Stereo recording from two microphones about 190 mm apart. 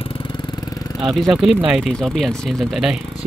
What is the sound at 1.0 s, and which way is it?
Speech, centre (ahead or behind).